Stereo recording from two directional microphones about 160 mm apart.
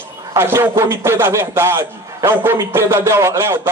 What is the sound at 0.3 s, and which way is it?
A man's voice, 15° right (ahead or behind).